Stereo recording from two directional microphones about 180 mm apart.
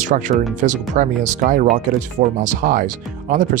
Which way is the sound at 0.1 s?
45° right (ahead or behind).